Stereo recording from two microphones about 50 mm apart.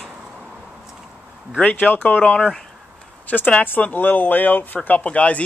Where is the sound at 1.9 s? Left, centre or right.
Left.